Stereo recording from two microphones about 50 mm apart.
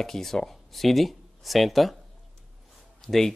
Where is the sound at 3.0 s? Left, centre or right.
Centre.